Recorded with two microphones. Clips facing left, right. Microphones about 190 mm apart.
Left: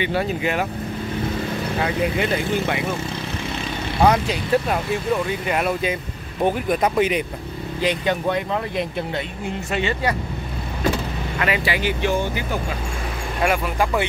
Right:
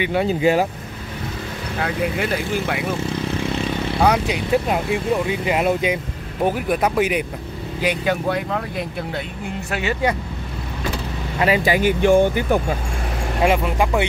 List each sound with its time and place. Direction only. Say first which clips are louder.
0.0 s speech: right 2 dB; 15° right (ahead or behind)
0.3 s speech: right 6 dB; 30° right (ahead or behind)
1.8 s speech: even; 5° right (ahead or behind)
4.1 s speech: right 1 dB; 10° right (ahead or behind)
6.4 s speech: even; 10° right (ahead or behind)
11.3 s speech: right 5 dB; 35° right (ahead or behind)
13.4 s speech: right 3 dB; 20° right (ahead or behind)